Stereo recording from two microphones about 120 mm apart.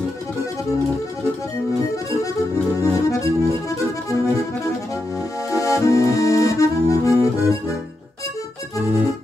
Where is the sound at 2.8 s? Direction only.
30° left (ahead or behind).